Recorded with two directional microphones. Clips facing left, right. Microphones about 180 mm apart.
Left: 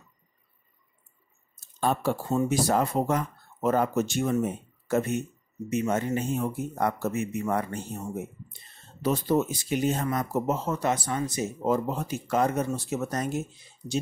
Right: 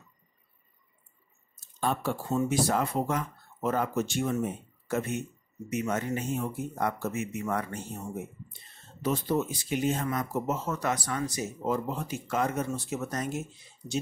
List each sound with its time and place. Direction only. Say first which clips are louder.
1.8 s speech: left 4 dB; 40° left (ahead or behind)
5.7 s speech: left 4 dB; 30° left (ahead or behind)
6.4 s speech: left 3 dB; 40° left (ahead or behind)
9.0 s speech: left 3 dB; 45° left (ahead or behind); by 11.4 s 25° left (ahead or behind)
11.6 s speech: left 4 dB; 45° left (ahead or behind)